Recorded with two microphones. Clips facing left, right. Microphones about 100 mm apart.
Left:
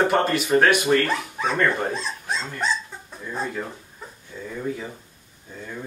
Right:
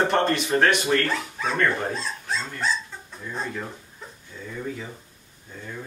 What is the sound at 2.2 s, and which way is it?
Dog, 20° left (ahead or behind).